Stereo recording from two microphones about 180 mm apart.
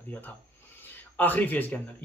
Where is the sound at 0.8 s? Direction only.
10° left (ahead or behind).